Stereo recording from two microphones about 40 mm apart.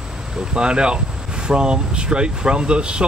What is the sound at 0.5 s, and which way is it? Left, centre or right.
Speech, right.